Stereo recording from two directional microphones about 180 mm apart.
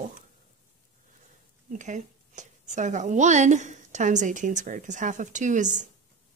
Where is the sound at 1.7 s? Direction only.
45° right (ahead or behind).